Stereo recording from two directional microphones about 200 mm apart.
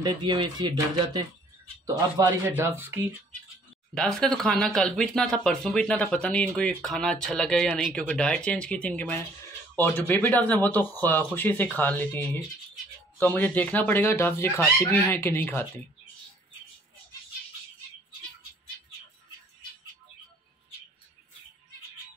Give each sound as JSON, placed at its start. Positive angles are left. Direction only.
{"t": 0.0, "sound": "speech", "side_deg": -20}
{"t": 3.9, "sound": "speech", "side_deg": 5}